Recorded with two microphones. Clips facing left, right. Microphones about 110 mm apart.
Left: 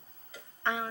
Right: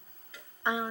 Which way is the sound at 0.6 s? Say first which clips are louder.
Right 1 dB; 15° right (ahead or behind).